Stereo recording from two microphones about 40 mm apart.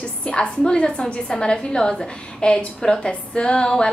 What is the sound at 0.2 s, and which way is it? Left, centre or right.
A woman's voice, left.